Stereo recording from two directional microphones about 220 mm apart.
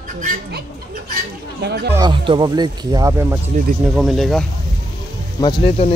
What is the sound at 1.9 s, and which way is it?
Speech, 20° right (ahead or behind).